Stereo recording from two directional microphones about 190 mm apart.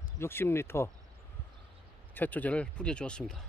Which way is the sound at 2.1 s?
10° left (ahead or behind).